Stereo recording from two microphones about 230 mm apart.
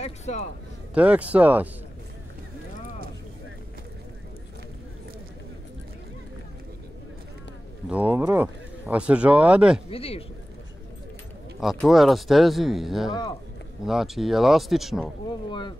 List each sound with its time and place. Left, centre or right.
0.0 s a man's voice: left
0.9 s speech: centre
7.9 s speech: centre
9.8 s a man's voice: left
11.6 s speech: centre